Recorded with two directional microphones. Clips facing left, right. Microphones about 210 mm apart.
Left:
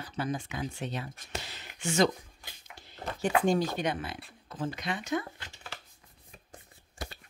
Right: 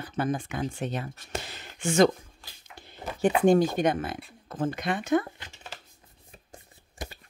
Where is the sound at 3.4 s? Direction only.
55° right (ahead or behind).